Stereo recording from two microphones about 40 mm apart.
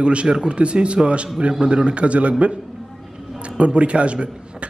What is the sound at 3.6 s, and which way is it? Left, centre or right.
A man's voice, right.